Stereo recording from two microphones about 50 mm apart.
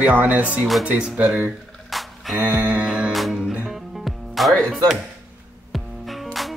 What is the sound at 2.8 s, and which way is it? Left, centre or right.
Music, right.